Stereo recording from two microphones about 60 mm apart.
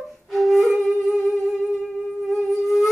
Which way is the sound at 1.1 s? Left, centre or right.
Centre.